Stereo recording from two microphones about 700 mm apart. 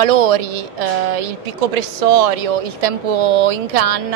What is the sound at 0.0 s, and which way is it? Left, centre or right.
Speech, right.